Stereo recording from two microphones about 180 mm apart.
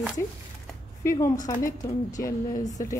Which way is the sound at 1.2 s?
20° left (ahead or behind).